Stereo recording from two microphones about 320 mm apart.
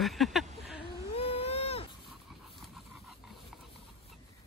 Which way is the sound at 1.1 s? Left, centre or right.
Centre.